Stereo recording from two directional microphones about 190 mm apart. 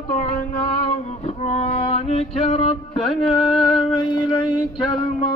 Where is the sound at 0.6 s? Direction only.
40° left (ahead or behind).